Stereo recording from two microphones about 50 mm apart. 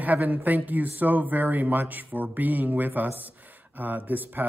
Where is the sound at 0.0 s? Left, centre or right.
Right.